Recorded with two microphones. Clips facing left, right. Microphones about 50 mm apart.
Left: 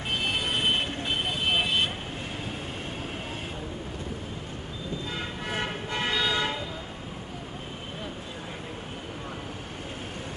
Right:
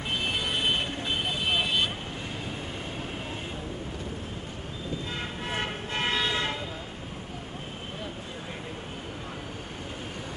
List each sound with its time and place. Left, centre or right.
6.0 s toot: right